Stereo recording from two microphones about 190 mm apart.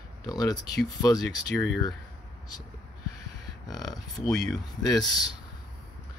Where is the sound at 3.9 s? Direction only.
20° left (ahead or behind).